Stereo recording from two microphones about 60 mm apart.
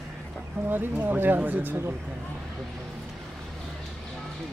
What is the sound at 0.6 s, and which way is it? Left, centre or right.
Speech, right.